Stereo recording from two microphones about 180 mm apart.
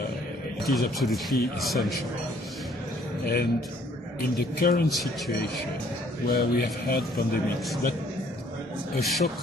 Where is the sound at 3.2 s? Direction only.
60° left (ahead or behind).